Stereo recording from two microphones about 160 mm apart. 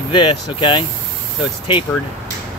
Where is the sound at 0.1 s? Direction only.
30° left (ahead or behind).